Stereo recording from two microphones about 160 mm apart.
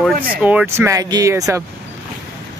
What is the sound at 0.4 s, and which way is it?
Speech, 10° right (ahead or behind).